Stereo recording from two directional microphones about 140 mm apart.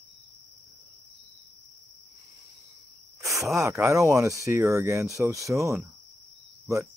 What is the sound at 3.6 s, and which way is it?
Speech, 20° right (ahead or behind).